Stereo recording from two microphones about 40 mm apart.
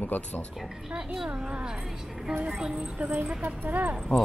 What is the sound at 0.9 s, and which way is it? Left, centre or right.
Speech, centre.